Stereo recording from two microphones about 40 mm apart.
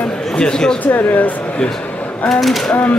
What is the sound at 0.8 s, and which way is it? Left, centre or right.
Speech, left.